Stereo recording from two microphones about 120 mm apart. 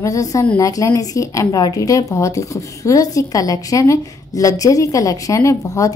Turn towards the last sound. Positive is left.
turn(degrees=25)  # may be behind; listen again after turning